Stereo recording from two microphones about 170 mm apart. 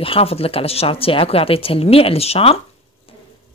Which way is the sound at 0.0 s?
35° left (ahead or behind).